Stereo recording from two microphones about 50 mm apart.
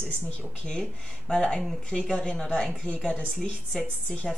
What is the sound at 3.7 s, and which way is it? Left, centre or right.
Speech, centre.